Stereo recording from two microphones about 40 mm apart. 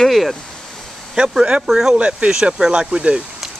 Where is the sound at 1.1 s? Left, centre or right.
Centre.